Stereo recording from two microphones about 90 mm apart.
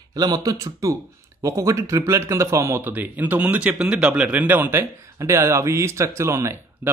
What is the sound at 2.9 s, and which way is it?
Speech, 20° right (ahead or behind).